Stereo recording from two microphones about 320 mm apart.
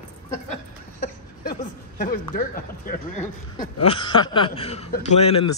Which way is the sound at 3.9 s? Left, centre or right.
Centre.